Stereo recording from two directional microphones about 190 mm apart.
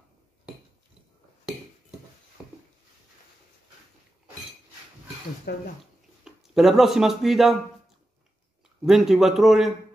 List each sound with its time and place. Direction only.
2.4 s a sound: 5° right (ahead or behind)
5.5 s speech: 55° left (ahead or behind)
6.2 s speech: centre (ahead or behind)
8.8 s a man's voice: centre (ahead or behind)